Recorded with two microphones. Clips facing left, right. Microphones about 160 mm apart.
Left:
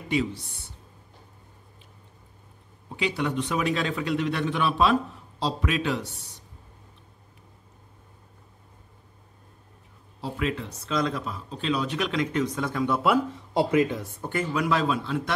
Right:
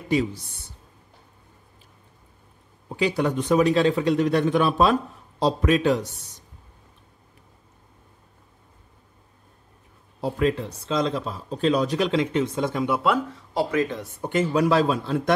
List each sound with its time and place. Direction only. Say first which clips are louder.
0.1 s a man's voice: right 3 dB; 40° right (ahead or behind)
3.0 s a man's voice: right 4 dB; 40° right (ahead or behind)
10.2 s a man's voice: right 6 dB; 35° right (ahead or behind)
11.5 s a man's voice: right 6 dB; 40° right (ahead or behind); by 12.9 s 20° right (ahead or behind)
13.5 s speech: left 1 dB; 20° left (ahead or behind)
14.5 s a man's voice: right 4 dB; 35° right (ahead or behind)